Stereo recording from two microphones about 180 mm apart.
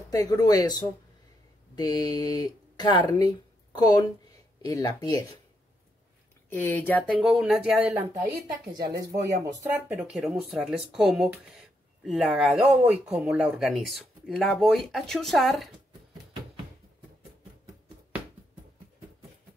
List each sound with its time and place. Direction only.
0.1 s speech: 20° left (ahead or behind)
6.5 s speech: 10° left (ahead or behind)
7.2 s speech: centre (ahead or behind)
9.2 s speech: 15° right (ahead or behind); by 15.7 s centre (ahead or behind)